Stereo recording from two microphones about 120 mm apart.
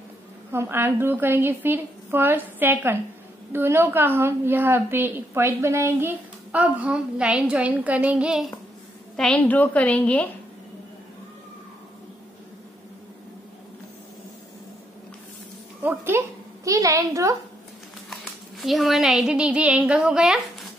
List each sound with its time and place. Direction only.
0.5 s a woman's voice: 20° right (ahead or behind)
9.1 s a woman's voice: 5° left (ahead or behind)
15.8 s a sound: 15° right (ahead or behind)
18.6 s a woman's voice: centre (ahead or behind)